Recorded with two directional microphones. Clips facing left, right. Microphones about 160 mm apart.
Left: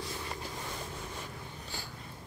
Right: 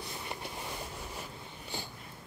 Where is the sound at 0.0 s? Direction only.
20° right (ahead or behind).